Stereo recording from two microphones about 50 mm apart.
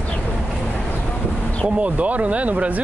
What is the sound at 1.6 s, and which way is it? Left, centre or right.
Speech, right.